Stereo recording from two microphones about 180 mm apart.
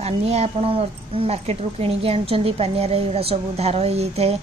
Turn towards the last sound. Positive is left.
turn(degrees=-35)  # may be behind; listen again after turning